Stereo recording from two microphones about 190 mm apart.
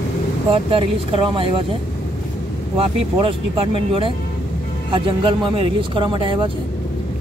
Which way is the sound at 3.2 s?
30° right (ahead or behind).